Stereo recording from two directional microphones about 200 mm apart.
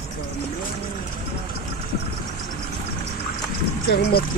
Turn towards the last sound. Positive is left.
turn(degrees=50)  # may be behind; listen again after turning